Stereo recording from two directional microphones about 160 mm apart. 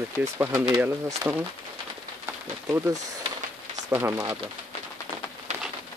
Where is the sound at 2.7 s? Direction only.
15° right (ahead or behind).